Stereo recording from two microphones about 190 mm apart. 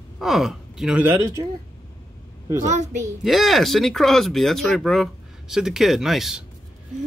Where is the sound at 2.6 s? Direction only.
35° right (ahead or behind).